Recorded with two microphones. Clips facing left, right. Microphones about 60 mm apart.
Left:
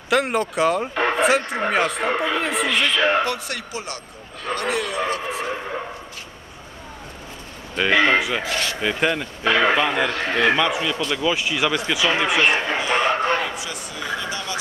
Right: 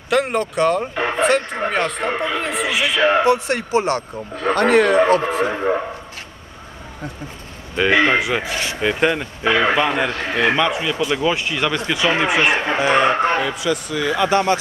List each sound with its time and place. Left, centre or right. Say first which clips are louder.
0.1 s speech: right 2 dB; centre; by 5.5 s right
7.7 s a man's voice: right 2 dB; centre
11.3 s speech: right 1 dB; centre
12.6 s speech: right 5 dB; right
13.5 s speech: right 9 dB; right